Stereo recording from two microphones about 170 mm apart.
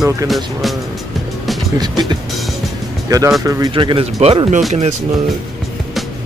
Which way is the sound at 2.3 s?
Centre (ahead or behind).